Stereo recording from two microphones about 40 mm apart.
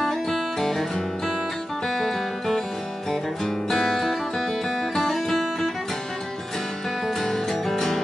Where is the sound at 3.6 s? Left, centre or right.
Centre.